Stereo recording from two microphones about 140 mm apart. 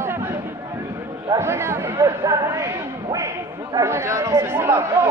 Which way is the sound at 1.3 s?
20° right (ahead or behind).